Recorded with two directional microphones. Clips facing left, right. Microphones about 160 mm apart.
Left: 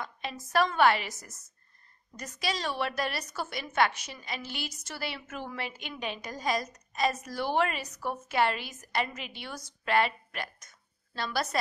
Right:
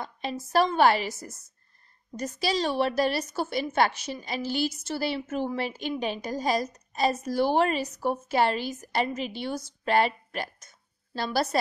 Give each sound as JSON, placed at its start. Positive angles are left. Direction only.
{"t": 0.0, "sound": "a woman's voice", "side_deg": -35}